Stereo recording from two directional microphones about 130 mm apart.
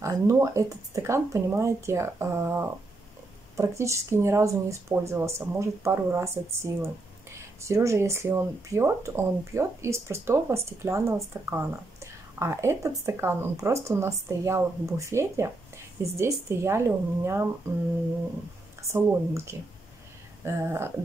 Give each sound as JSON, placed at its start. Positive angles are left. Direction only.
{"t": 0.0, "sound": "speech", "side_deg": -25}
{"t": 18.8, "sound": "speech", "side_deg": -20}